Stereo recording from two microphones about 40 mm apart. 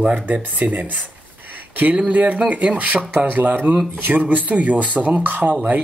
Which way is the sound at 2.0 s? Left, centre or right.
Right.